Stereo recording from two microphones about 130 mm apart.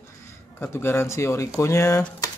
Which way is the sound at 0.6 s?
20° left (ahead or behind).